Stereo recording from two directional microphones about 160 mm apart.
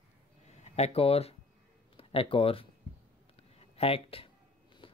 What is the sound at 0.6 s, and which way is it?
Speech, 40° left (ahead or behind).